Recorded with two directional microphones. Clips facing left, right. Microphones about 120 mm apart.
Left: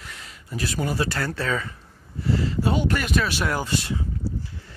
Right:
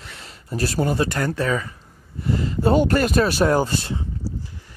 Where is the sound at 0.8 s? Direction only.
25° right (ahead or behind).